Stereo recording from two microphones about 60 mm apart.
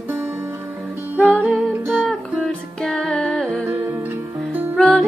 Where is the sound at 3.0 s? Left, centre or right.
Centre.